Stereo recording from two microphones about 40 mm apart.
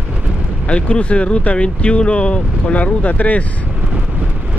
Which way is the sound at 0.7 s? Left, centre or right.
Left.